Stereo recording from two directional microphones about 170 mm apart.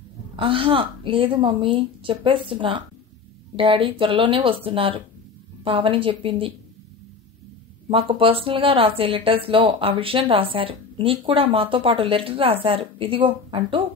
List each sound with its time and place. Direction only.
0.4 s speech: 30° right (ahead or behind)
7.9 s speech: 35° right (ahead or behind)